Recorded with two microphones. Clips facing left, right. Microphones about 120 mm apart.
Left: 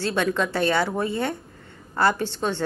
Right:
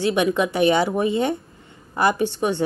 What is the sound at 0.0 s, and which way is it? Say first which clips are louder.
A woman's voice: right 4 dB; 15° right (ahead or behind).